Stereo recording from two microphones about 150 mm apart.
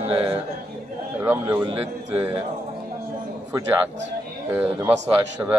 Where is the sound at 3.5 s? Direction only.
15° right (ahead or behind).